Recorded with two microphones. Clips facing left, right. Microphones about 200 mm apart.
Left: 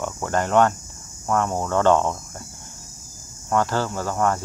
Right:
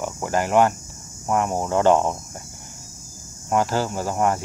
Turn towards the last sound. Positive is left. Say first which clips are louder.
# right 1 dB
turn(degrees=-15)  # may be behind; listen again after turning